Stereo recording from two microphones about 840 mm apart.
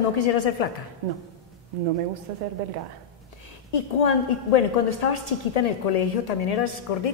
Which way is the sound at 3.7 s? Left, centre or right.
Left.